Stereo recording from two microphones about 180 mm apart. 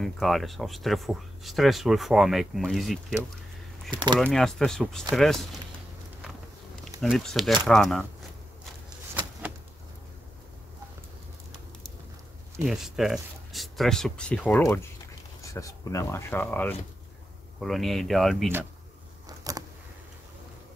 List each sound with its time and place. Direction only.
0.0 s speech: centre (ahead or behind)
3.9 s speech: 25° right (ahead or behind)
4.2 s speech: 5° left (ahead or behind)
7.0 s speech: 5° left (ahead or behind)
12.6 s speech: centre (ahead or behind)
19.2 s a sound: 20° right (ahead or behind)